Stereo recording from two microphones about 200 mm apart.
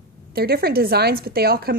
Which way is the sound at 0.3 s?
50° right (ahead or behind).